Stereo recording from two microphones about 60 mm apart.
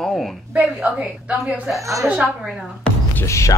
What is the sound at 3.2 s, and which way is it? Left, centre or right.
Speech, left.